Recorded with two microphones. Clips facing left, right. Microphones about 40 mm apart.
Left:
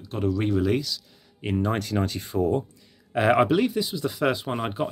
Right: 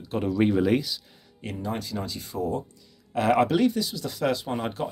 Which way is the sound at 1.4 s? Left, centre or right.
Left.